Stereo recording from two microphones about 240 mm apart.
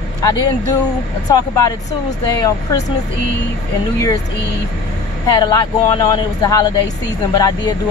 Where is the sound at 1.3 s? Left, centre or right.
Centre.